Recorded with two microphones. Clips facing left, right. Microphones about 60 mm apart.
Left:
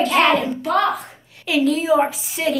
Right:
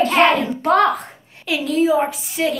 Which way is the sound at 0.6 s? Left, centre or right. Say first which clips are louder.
Right 4 dB; right.